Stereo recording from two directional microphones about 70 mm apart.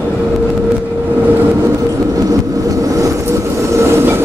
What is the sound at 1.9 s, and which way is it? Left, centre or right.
Vehicle, right.